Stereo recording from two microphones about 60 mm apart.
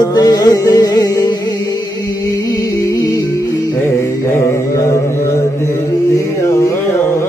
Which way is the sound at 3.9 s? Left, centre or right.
Left.